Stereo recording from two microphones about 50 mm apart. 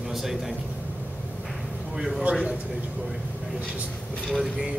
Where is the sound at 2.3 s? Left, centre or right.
Right.